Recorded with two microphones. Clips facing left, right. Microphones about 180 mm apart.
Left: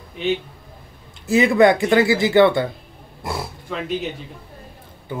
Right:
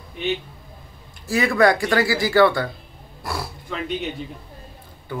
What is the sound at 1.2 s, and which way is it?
Speech, 20° left (ahead or behind).